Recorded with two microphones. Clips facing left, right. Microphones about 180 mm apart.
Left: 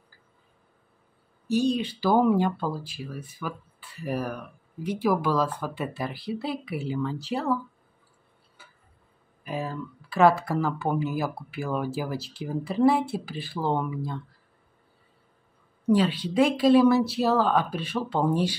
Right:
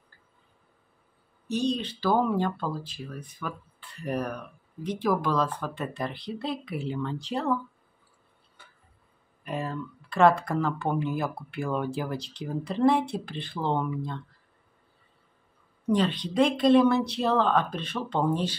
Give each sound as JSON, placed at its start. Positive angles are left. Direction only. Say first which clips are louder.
{"t": 1.5, "sound": "speech", "louder": "left 4 dB", "side_deg": 10}
{"t": 8.6, "sound": "tick-tock", "louder": "left 1 dB", "side_deg": 5}
{"t": 9.4, "sound": "speech", "louder": "even", "side_deg": 0}
{"t": 15.9, "sound": "speech", "louder": "left 3 dB", "side_deg": 5}